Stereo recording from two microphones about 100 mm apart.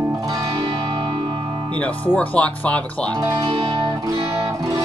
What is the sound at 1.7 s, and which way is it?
Speech, 15° left (ahead or behind).